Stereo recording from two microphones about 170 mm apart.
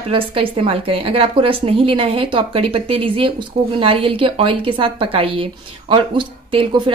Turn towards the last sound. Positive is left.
turn(degrees=-30)  # may be behind; listen again after turning